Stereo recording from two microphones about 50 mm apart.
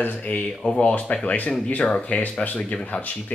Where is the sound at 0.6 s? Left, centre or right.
Centre.